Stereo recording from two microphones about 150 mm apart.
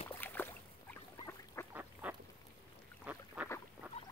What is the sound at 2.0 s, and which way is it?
Duck, 10° right (ahead or behind).